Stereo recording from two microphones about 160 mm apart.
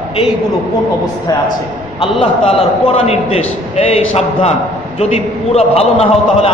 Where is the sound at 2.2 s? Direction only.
40° left (ahead or behind).